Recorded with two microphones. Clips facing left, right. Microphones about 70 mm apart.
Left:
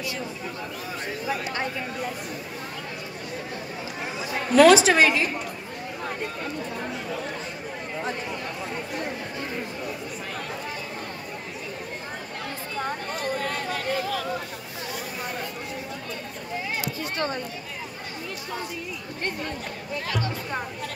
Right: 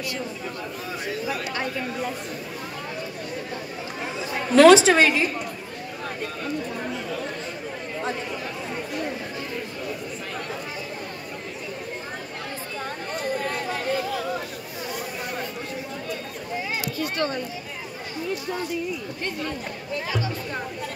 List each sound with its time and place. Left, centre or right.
4.6 s a woman's voice: centre
8.0 s chatter: centre
12.7 s a sound: centre
17.0 s speech: left
20.1 s speech: centre